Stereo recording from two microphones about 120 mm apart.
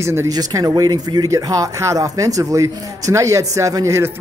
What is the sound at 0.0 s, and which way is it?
Speech, 25° right (ahead or behind).